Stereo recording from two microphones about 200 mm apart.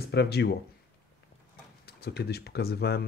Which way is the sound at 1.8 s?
55° left (ahead or behind).